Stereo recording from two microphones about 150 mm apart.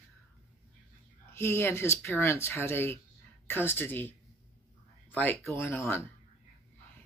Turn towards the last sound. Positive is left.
turn(degrees=15)  # may be behind; listen again after turning